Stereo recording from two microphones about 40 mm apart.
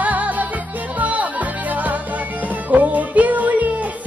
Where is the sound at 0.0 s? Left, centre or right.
Right.